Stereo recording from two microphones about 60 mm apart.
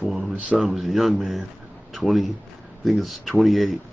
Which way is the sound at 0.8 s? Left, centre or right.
Centre.